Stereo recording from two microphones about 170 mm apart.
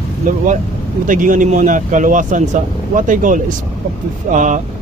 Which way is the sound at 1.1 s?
50° right (ahead or behind).